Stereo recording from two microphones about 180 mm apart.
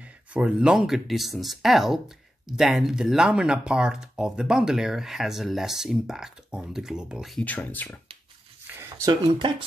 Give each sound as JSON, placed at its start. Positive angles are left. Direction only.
{"t": 0.3, "sound": "speech", "side_deg": -5}
{"t": 8.6, "sound": "speech", "side_deg": -15}